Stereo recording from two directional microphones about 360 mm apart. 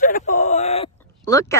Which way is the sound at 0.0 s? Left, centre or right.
Left.